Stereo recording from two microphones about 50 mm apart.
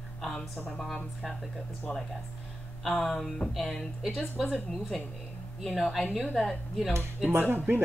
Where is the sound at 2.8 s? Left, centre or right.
Centre.